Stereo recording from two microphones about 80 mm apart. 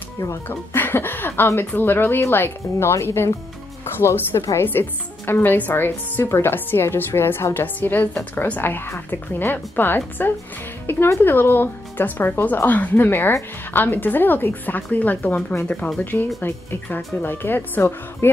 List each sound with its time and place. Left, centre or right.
0.5 s a woman's voice: left